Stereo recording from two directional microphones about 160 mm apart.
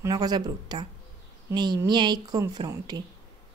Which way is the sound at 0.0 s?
25° right (ahead or behind).